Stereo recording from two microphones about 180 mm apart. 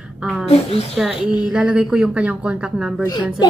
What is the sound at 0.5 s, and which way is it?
Speech, 35° left (ahead or behind).